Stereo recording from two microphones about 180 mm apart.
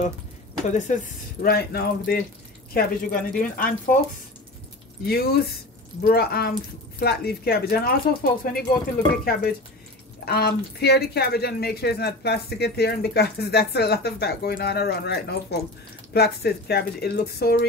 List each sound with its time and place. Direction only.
0.7 s speech: 45° left (ahead or behind); by 2.2 s 60° left (ahead or behind)
2.7 s speech: 50° left (ahead or behind)
5.0 s speech: 60° left (ahead or behind)